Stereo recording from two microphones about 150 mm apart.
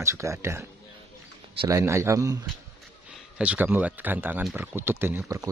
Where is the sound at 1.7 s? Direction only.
20° right (ahead or behind).